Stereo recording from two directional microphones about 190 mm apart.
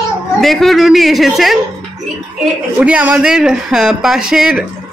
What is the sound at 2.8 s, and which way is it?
Speech, 5° right (ahead or behind).